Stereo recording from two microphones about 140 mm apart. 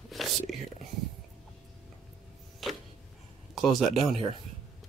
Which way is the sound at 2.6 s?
Centre (ahead or behind).